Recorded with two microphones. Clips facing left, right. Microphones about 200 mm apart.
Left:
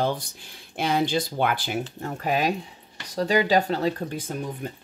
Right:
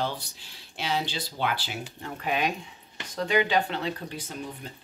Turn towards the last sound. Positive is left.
turn(degrees=50)  # may be behind; listen again after turning